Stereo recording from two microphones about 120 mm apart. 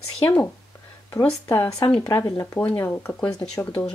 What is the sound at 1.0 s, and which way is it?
Speech, 25° left (ahead or behind).